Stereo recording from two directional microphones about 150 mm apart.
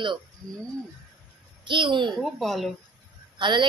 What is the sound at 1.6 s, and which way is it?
Speech, 30° right (ahead or behind).